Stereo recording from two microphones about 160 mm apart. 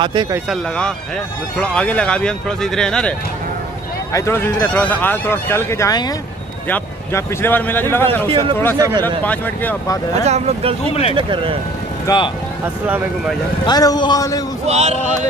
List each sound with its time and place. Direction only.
0.0 s speech: 30° right (ahead or behind)
0.5 s speech: 5° left (ahead or behind)
4.1 s speech: 15° left (ahead or behind)
10.2 s speech: 40° right (ahead or behind)
10.9 s speech: 40° left (ahead or behind)
11.1 s speech: 35° right (ahead or behind)
12.1 s a man's voice: 20° left (ahead or behind)
13.7 s a man's voice: 25° left (ahead or behind)
14.7 s speech: 45° right (ahead or behind)